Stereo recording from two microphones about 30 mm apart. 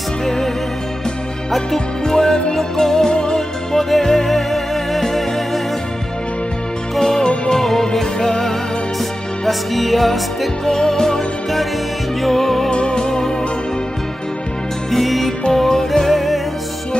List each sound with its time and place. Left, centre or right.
0.2 s music: centre
2.0 s music: centre
3.1 s music: left
3.3 s music: centre
7.0 s music: centre
10.7 s music: centre
12.7 s music: left
14.9 s music: centre